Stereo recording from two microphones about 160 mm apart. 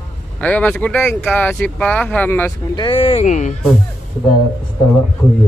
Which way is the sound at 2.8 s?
35° left (ahead or behind).